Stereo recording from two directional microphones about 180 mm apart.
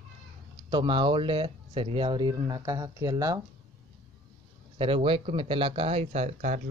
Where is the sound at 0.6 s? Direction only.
25° right (ahead or behind).